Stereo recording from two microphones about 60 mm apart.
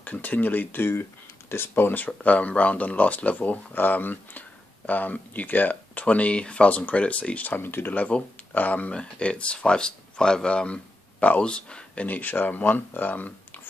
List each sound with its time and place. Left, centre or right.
0.0 s speech: left
2.0 s speech: left